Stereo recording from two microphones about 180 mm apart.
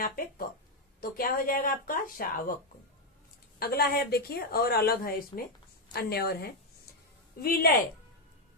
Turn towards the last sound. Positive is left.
turn(degrees=55)  # may be behind; listen again after turning